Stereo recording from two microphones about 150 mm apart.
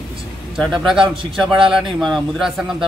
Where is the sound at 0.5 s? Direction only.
Centre (ahead or behind).